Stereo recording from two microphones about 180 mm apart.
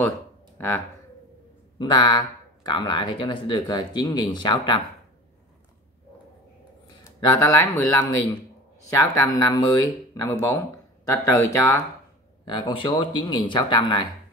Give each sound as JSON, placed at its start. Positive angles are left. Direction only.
{"t": 0.6, "sound": "speech", "side_deg": 10}
{"t": 1.8, "sound": "speech", "side_deg": 25}
{"t": 7.1, "sound": "a man's voice", "side_deg": 20}